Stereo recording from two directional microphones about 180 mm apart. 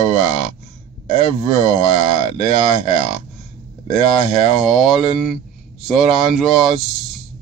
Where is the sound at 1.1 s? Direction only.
35° left (ahead or behind).